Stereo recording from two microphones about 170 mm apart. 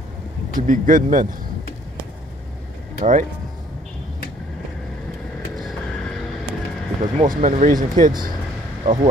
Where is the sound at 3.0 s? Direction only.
50° right (ahead or behind).